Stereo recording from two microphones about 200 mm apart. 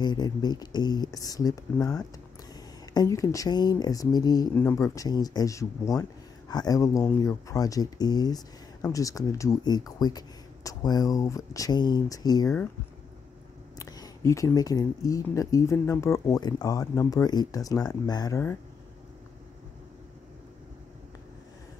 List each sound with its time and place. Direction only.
0.0 s speech: 20° left (ahead or behind)
13.7 s speech: 20° left (ahead or behind)